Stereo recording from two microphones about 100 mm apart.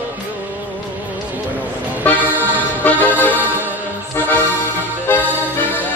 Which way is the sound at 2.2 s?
15° right (ahead or behind).